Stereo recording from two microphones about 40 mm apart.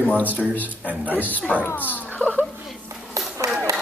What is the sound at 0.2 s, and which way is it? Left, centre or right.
A man's voice, left.